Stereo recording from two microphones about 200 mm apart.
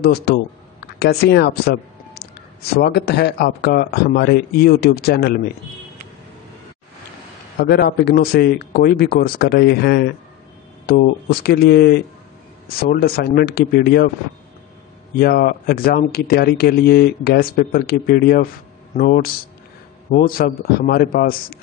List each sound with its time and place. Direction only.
0.0 s speech: 55° left (ahead or behind)
7.6 s speech: 55° left (ahead or behind)
15.1 s speech: 50° left (ahead or behind)